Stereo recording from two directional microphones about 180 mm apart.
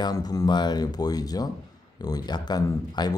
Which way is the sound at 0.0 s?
20° left (ahead or behind).